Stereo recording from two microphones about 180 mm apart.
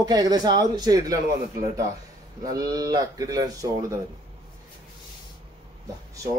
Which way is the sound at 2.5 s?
20° right (ahead or behind).